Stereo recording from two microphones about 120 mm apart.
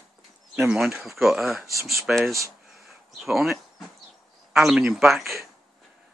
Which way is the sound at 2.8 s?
Centre (ahead or behind).